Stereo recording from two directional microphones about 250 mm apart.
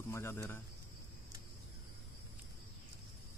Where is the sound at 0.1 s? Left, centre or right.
Centre.